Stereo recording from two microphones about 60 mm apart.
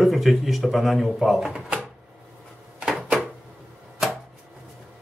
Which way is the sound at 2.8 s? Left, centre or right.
Centre.